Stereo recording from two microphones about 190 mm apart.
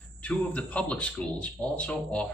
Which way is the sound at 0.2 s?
5° left (ahead or behind).